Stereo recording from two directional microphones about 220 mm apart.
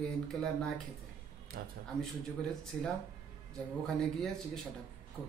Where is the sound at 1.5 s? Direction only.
40° right (ahead or behind).